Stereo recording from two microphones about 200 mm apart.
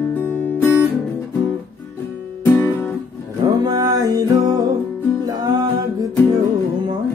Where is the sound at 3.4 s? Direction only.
20° right (ahead or behind).